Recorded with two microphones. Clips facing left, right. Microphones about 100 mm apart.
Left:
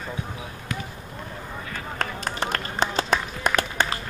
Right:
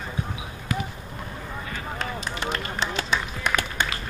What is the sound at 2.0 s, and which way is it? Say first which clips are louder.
Run: left 4 dB; 50° left (ahead or behind).